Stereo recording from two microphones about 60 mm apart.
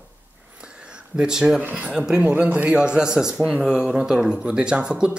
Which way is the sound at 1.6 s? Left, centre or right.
Right.